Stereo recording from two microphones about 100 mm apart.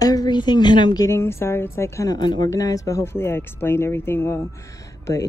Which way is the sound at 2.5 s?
35° left (ahead or behind).